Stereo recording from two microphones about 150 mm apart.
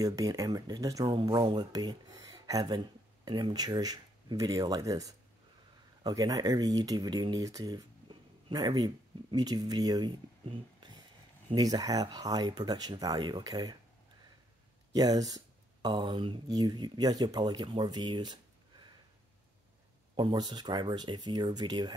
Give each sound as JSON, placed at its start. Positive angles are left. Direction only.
{"t": 0.0, "sound": "speech", "side_deg": -25}
{"t": 15.0, "sound": "speech", "side_deg": -25}
{"t": 20.2, "sound": "speech", "side_deg": -30}